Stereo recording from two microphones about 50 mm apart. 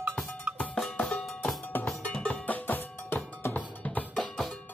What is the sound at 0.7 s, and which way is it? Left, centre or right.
Cowbell, centre.